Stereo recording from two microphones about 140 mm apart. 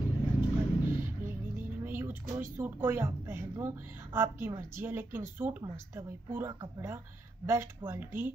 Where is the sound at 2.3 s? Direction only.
15° right (ahead or behind).